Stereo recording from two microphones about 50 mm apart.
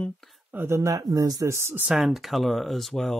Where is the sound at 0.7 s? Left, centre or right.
Right.